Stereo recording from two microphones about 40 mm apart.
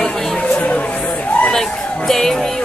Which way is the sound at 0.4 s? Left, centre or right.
Left.